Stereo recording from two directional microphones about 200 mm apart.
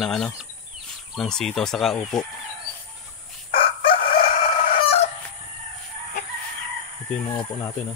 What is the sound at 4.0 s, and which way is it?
Crowing, 45° left (ahead or behind).